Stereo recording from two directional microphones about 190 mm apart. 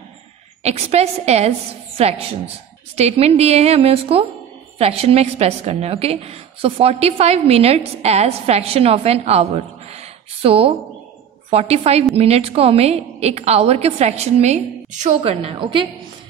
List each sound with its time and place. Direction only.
0.7 s a woman's voice: 35° right (ahead or behind)